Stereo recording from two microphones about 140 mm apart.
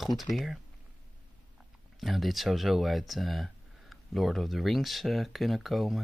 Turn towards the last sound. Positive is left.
turn(degrees=0)  # may be behind; listen again after turning